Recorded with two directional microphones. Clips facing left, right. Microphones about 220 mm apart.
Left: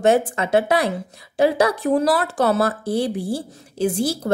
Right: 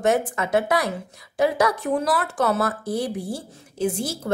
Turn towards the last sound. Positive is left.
turn(degrees=35)  # may be behind; listen again after turning